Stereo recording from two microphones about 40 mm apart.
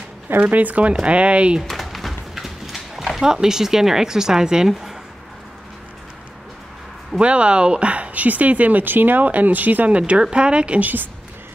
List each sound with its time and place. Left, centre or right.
0.5 s speech: right
1.6 s a sound: centre
3.1 s speech: centre
7.2 s speech: right
10.8 s a woman's voice: right